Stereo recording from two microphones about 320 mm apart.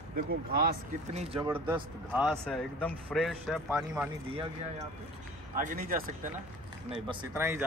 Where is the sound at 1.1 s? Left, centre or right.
Centre.